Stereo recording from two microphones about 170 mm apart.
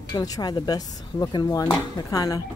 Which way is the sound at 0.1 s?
20° left (ahead or behind).